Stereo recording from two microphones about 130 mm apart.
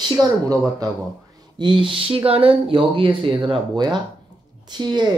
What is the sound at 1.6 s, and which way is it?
Speech, 40° right (ahead or behind).